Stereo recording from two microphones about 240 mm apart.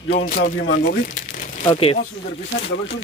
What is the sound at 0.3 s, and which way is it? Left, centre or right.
Speech, left.